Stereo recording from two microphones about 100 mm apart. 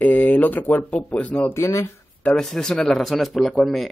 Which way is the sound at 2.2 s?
15° left (ahead or behind).